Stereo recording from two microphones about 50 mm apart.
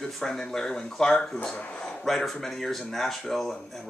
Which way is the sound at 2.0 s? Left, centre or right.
Centre.